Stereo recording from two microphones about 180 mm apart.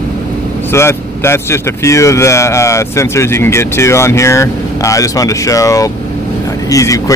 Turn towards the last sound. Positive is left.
turn(degrees=20)  # may be behind; listen again after turning